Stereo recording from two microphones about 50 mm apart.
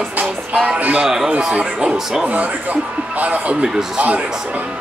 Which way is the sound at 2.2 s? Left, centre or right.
Right.